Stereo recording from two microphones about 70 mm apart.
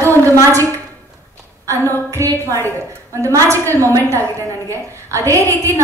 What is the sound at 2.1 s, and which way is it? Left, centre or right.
A woman's voice, right.